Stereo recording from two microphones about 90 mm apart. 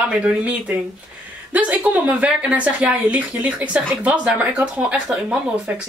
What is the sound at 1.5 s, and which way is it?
Speech, 15° right (ahead or behind).